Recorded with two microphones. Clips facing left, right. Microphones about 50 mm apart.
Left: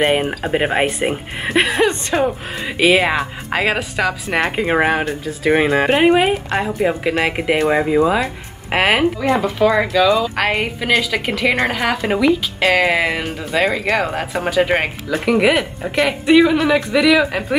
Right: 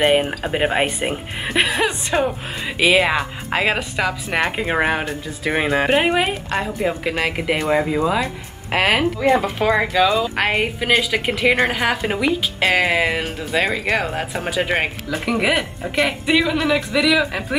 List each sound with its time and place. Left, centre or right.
0.0 s speech: centre
1.9 s a woman's voice: centre
2.8 s speech: centre
9.6 s a woman's voice: centre